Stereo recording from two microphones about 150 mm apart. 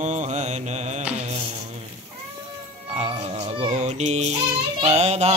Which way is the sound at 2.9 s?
40° right (ahead or behind).